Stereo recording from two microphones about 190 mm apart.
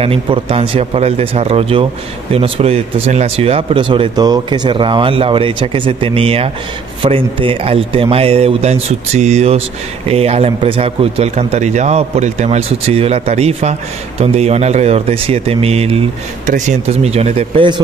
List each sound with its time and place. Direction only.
0.0 s a man's voice: 30° right (ahead or behind)